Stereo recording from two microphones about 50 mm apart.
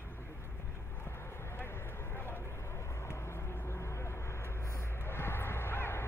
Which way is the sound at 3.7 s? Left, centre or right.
Left.